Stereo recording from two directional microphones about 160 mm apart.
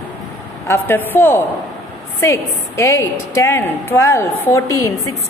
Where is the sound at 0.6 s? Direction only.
15° left (ahead or behind).